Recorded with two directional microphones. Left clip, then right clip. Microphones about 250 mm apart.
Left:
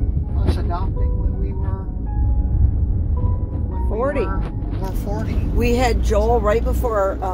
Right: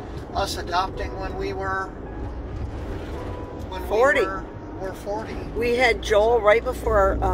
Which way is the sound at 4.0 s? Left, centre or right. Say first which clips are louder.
Right 3 dB; centre.